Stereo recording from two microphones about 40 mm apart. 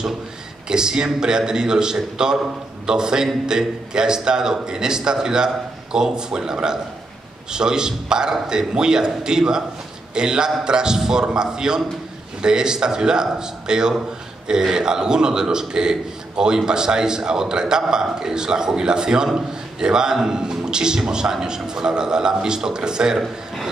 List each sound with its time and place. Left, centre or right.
0.7 s a man's voice: centre